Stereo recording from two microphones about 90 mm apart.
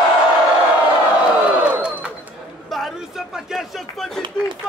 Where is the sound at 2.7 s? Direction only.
Centre (ahead or behind).